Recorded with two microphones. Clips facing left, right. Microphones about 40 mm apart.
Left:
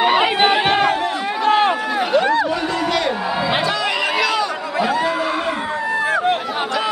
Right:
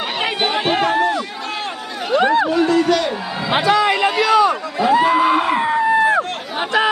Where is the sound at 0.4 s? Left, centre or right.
Centre.